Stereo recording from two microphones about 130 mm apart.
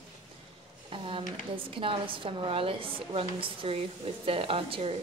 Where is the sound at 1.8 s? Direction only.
40° right (ahead or behind).